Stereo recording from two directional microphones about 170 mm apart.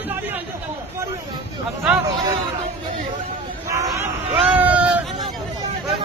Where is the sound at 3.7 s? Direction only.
20° right (ahead or behind).